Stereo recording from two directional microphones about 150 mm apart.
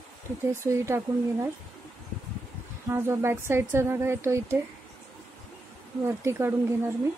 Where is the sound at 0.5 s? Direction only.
20° right (ahead or behind).